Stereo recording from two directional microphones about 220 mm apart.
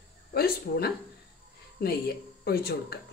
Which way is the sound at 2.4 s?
45° left (ahead or behind).